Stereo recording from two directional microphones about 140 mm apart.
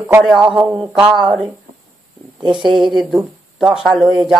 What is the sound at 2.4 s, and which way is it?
Speech, 35° right (ahead or behind).